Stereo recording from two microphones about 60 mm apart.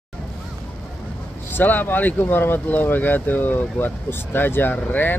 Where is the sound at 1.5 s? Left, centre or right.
Left.